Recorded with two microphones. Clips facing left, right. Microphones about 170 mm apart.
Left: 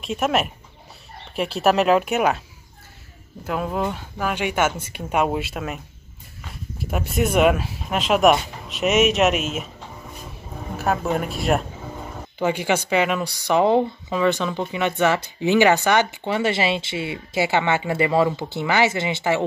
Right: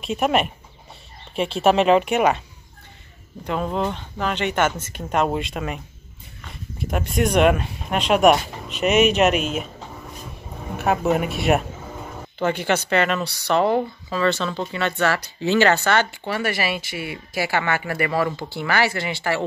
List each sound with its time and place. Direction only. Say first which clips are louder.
0.0 s speech: right 1 dB; centre (ahead or behind)
3.4 s speech: right 1 dB; 5° left (ahead or behind)
6.8 s speech: right 1 dB; 5° left (ahead or behind)
10.8 s speech: right 2 dB; centre (ahead or behind)
12.4 s speech: even; 10° left (ahead or behind)